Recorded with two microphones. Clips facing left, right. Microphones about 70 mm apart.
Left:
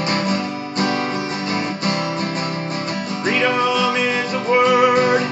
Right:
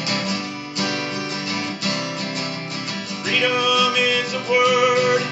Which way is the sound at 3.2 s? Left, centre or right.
Left.